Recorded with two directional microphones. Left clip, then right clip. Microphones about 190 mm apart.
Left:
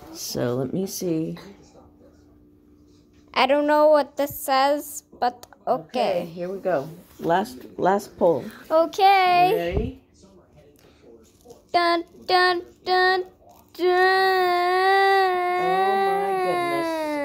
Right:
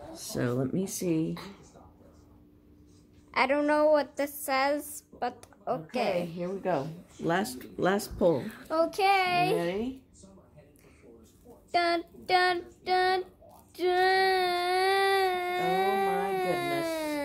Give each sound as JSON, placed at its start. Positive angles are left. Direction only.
{"t": 0.3, "sound": "a woman's voice", "side_deg": 20}
{"t": 1.3, "sound": "speech", "side_deg": -10}
{"t": 3.3, "sound": "a woman's voice", "side_deg": 15}
{"t": 6.6, "sound": "a woman's voice", "side_deg": -20}
{"t": 11.7, "sound": "child singing", "side_deg": 15}
{"t": 13.7, "sound": "baby cry", "side_deg": 15}